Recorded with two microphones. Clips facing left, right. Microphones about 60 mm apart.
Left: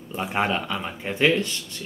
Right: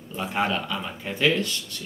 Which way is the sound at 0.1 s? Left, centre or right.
Left.